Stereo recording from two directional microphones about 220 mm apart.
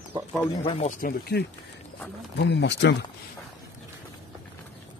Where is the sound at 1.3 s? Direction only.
50° left (ahead or behind).